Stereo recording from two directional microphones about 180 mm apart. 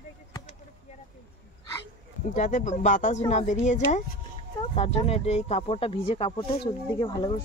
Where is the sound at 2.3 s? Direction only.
45° left (ahead or behind).